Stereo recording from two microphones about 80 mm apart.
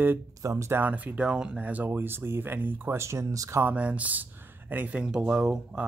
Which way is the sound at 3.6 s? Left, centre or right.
Centre.